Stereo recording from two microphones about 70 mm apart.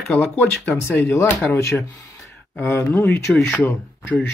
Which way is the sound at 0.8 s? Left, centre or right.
Left.